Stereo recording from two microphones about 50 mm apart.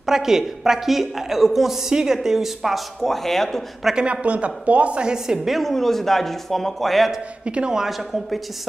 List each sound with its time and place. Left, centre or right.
0.0 s a woman's voice: centre
3.9 s speech: right
5.6 s speech: centre
7.4 s speech: centre
7.8 s speech: centre